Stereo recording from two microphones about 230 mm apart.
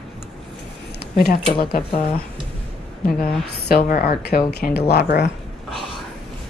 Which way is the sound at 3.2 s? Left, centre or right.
Left.